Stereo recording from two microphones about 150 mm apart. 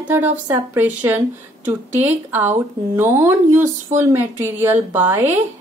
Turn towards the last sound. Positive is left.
turn(degrees=-15)  # may be behind; listen again after turning